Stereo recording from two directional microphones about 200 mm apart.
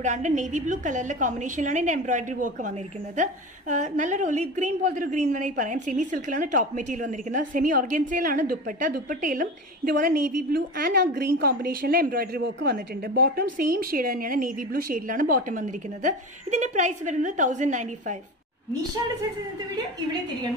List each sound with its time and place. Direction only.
0.0 s a woman's voice: 35° right (ahead or behind)